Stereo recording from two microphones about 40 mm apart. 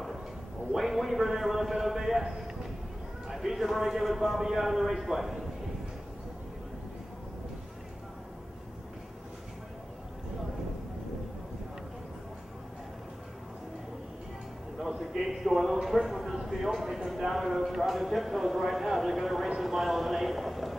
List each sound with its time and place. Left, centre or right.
0.7 s a man's voice: centre
14.8 s a sound: centre
19.6 s clip-clop: centre